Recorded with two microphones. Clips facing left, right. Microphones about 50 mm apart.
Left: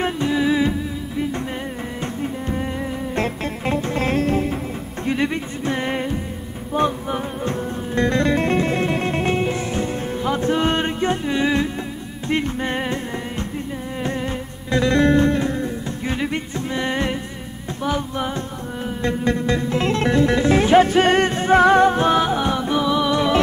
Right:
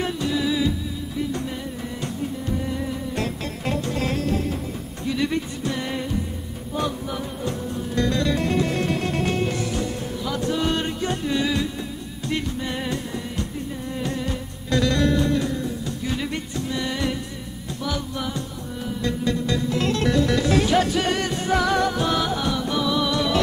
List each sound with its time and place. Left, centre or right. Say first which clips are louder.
0.0 s music: left 4 dB; left